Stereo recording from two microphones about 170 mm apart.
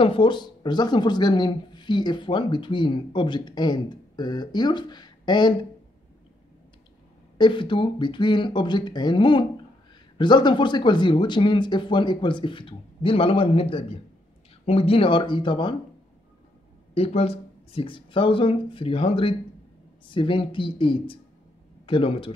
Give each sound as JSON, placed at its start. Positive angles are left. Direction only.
{"t": 0.0, "sound": "speech", "side_deg": 30}
{"t": 7.3, "sound": "speech", "side_deg": 30}
{"t": 16.9, "sound": "speech", "side_deg": 35}